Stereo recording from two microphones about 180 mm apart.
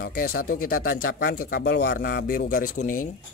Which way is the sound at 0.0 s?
55° left (ahead or behind).